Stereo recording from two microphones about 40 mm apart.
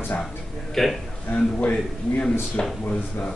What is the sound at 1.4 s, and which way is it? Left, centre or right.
Speech, left.